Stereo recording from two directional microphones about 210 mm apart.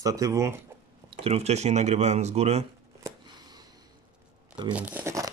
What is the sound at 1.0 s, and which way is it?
Speech, 30° right (ahead or behind).